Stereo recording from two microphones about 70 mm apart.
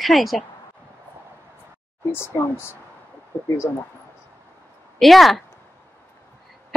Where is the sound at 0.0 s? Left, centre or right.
Centre.